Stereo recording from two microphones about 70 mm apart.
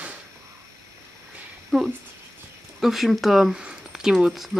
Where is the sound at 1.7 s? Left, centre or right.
Centre.